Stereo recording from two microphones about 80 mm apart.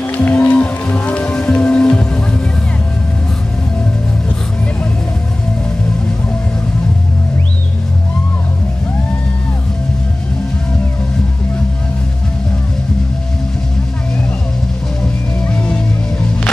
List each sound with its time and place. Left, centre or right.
0.0 s music: left
15.4 s music: centre